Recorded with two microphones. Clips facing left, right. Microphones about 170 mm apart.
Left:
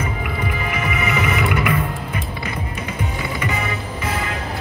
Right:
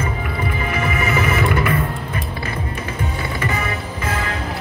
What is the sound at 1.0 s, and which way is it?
Music, 30° right (ahead or behind).